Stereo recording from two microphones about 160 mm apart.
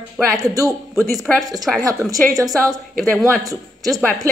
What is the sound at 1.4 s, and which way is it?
A man's voice, 25° right (ahead or behind).